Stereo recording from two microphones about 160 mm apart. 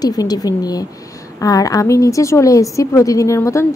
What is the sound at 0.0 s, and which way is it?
A woman's voice, 25° left (ahead or behind).